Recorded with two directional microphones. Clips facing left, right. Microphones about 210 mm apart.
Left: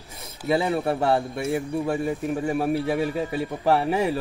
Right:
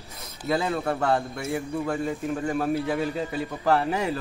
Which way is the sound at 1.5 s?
15° left (ahead or behind).